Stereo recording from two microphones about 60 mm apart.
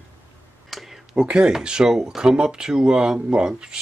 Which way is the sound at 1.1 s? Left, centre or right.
Centre.